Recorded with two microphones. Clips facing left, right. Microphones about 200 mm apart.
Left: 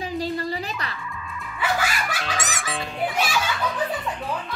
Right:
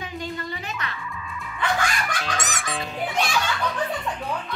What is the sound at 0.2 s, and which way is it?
Music, 35° left (ahead or behind).